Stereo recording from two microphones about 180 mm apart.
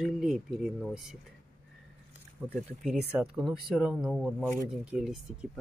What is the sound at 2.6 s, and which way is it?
Speech, 5° right (ahead or behind).